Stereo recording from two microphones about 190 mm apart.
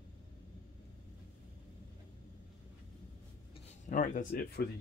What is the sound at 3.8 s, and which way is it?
Speech, 40° left (ahead or behind).